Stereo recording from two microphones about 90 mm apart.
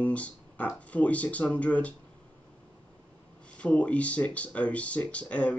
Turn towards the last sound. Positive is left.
turn(degrees=15)  # may be behind; listen again after turning